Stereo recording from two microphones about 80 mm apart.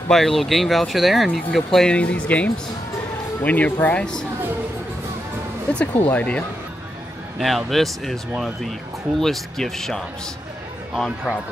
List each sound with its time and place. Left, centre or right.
0.1 s speech: centre
5.7 s speech: centre
7.3 s speech: centre